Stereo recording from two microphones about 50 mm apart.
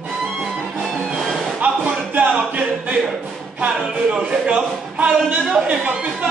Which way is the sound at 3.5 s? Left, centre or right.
Right.